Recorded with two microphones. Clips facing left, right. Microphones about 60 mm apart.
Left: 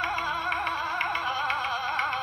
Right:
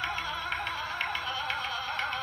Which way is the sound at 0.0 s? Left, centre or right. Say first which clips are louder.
Left 5 dB; left.